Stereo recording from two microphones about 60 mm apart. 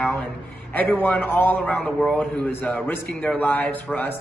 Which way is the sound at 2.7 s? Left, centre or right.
Left.